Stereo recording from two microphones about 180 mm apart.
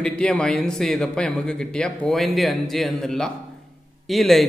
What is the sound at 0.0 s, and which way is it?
A man's voice, 5° left (ahead or behind).